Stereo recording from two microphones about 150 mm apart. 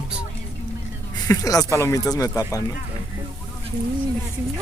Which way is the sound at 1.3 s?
25° left (ahead or behind).